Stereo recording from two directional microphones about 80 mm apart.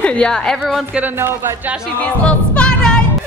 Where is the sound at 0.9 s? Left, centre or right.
Right.